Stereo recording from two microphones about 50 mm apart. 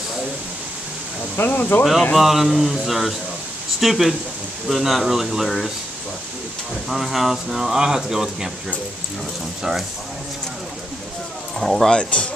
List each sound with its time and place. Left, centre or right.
1.3 s speech: left
2.1 s speech: centre
6.9 s speech: centre
9.6 s speech: centre
11.6 s speech: centre
11.9 s speech: centre